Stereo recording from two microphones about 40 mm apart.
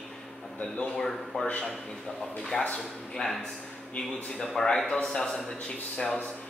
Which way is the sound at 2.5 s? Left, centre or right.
Left.